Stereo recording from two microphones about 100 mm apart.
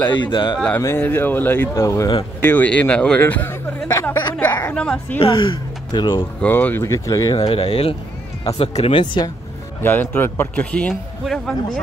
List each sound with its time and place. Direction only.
0.1 s speech: 55° left (ahead or behind)
0.7 s speech: 25° left (ahead or behind)
2.4 s speech: 15° left (ahead or behind)
4.6 s speech: 10° left (ahead or behind)
5.2 s speech: 55° left (ahead or behind)
6.4 s speech: 20° left (ahead or behind)
6.9 s speech: 35° left (ahead or behind)
7.4 s speech: 75° left (ahead or behind)
8.5 s speech: 90° left
8.9 s speech: 55° left (ahead or behind)
9.8 s speech: 20° left (ahead or behind)
10.5 s speech: 10° left (ahead or behind)